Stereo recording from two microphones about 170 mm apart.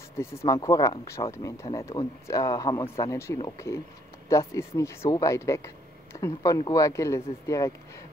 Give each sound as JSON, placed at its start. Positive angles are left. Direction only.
{"t": 0.2, "sound": "speech", "side_deg": 15}